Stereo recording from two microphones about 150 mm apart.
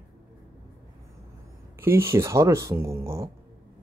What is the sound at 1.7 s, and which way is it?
Speech, 15° right (ahead or behind).